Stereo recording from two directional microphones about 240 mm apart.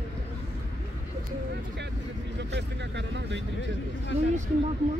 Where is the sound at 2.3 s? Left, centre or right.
Right.